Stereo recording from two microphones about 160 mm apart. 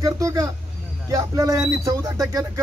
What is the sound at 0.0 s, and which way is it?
Speech, 20° right (ahead or behind).